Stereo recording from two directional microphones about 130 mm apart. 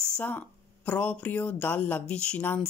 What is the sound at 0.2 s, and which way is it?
Speech, 15° left (ahead or behind).